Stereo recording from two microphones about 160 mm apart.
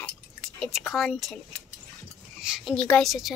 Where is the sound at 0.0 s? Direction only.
5° left (ahead or behind).